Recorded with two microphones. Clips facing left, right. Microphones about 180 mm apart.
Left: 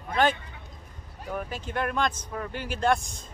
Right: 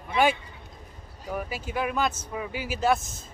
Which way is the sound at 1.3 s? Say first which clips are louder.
Right 1 dB; 5° right (ahead or behind).